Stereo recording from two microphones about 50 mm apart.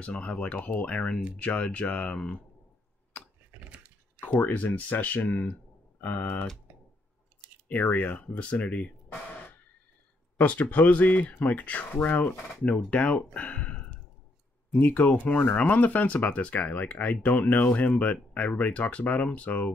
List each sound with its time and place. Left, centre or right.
0.0 s speech: left
3.1 s a sound: left
4.2 s speech: left
7.6 s speech: left